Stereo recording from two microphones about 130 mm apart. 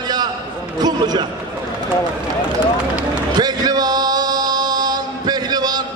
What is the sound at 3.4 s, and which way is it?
Male singing, 30° right (ahead or behind).